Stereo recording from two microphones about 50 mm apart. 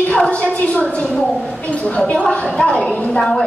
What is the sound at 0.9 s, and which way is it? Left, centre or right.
A woman's voice, left.